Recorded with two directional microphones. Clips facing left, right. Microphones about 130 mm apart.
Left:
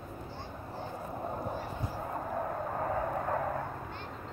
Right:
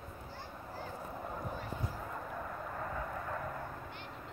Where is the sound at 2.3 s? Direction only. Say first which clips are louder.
Left 7 dB; 50° left (ahead or behind).